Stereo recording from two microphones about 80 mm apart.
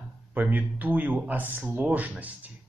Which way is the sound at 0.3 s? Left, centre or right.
Right.